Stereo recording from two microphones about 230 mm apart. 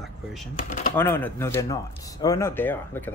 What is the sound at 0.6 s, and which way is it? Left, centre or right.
Speech, left.